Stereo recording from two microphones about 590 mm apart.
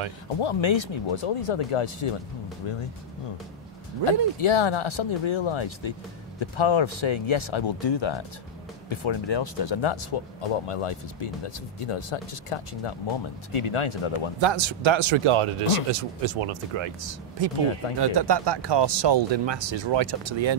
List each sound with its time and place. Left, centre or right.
0.4 s speech: left
4.4 s speech: left
14.4 s speech: right